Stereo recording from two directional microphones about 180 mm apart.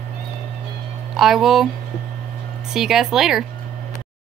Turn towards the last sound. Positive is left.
turn(degrees=0)  # may be behind; listen again after turning